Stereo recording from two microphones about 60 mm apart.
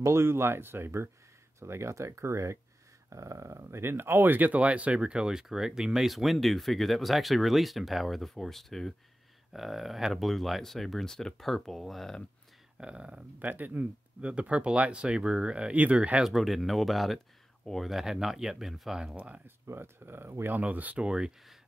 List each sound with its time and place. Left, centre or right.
0.0 s speech: right; by 12.2 s centre
12.7 s speech: centre
13.5 s speech: right
16.3 s speech: centre
19.1 s speech: right
19.6 s speech: right
20.5 s speech: right
21.0 s speech: centre